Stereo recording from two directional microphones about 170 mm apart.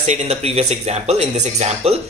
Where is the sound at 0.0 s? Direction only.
40° right (ahead or behind).